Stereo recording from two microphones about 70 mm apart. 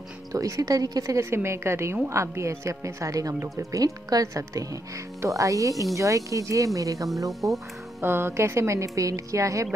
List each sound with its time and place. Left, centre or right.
0.3 s a woman's voice: right
1.1 s a woman's voice: right
8.0 s speech: right